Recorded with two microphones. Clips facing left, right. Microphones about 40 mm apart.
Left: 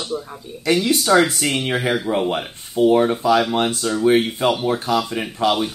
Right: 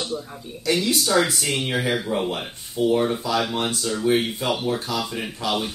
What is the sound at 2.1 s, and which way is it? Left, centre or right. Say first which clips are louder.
Speech: left 4 dB; left.